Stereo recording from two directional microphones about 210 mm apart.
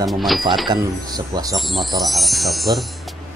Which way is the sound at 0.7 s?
20° right (ahead or behind).